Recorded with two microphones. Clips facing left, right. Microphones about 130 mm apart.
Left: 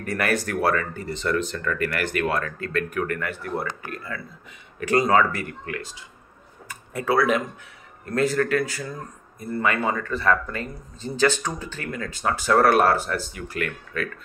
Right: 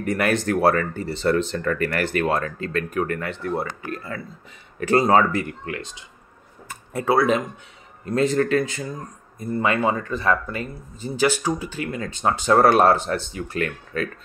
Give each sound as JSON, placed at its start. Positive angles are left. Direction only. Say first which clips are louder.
{"t": 0.0, "sound": "speech", "louder": "right 3 dB", "side_deg": -25}